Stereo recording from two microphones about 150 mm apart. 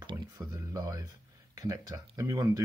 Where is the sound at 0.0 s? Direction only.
25° right (ahead or behind).